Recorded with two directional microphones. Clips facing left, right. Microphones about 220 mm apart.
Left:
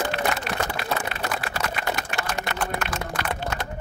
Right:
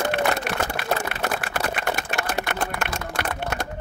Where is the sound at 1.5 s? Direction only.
55° right (ahead or behind).